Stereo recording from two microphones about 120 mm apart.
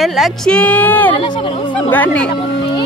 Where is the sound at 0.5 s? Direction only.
10° left (ahead or behind).